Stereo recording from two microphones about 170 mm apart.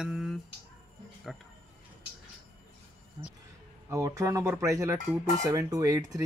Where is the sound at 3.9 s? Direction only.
20° right (ahead or behind).